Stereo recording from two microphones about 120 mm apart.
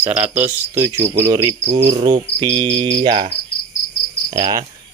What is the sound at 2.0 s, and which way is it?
Cricket, 40° right (ahead or behind).